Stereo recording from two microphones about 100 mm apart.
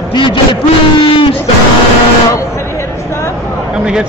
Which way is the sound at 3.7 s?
10° right (ahead or behind).